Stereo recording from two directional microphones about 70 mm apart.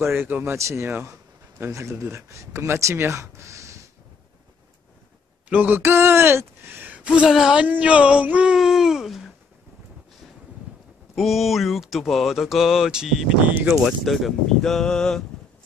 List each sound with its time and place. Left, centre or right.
0.0 s speech: right
0.6 s speech: right
5.5 s speech: right
5.8 s speech: right; by 7.6 s centre
7.6 s speech: right
8.5 s a sound: centre
11.1 s speech: centre
13.4 s speech: right
13.7 s speech: centre